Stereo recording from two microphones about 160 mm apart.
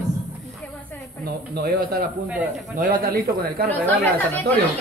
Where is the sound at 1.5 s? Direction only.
70° right (ahead or behind).